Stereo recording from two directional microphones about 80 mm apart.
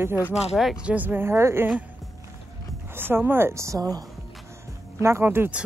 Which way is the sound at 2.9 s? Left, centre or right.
Right.